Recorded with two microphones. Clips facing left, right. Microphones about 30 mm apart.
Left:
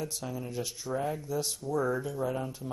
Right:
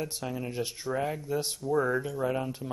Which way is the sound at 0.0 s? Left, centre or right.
Right.